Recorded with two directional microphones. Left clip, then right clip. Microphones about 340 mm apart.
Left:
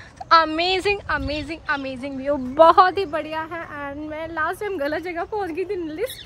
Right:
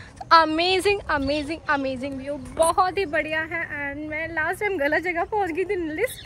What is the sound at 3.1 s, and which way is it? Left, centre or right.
A woman's voice, centre.